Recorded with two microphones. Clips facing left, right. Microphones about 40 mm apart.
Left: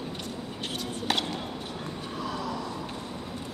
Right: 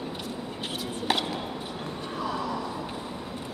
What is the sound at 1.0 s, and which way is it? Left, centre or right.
Chopping, centre.